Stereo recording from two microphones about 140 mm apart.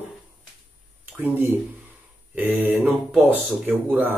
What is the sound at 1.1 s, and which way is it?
Speech, 15° right (ahead or behind).